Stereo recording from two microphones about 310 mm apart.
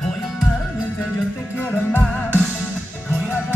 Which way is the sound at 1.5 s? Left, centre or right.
Centre.